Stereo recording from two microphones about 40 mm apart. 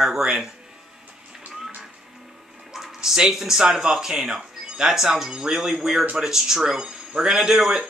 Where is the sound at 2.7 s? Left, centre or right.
Centre.